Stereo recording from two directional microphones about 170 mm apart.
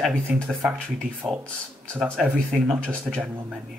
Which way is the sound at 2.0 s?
10° right (ahead or behind).